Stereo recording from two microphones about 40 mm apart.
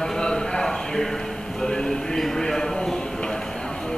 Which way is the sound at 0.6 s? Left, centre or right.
Centre.